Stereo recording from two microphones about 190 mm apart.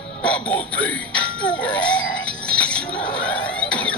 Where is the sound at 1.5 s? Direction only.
5° left (ahead or behind).